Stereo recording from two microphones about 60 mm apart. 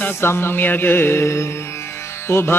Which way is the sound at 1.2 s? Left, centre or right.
Left.